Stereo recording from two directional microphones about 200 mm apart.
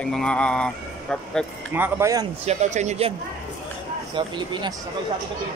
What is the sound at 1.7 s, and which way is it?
Speech, 10° right (ahead or behind).